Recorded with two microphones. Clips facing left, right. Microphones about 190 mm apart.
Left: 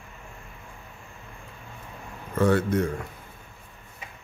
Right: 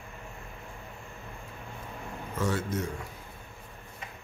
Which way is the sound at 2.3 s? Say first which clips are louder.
Left 9 dB; 60° left (ahead or behind).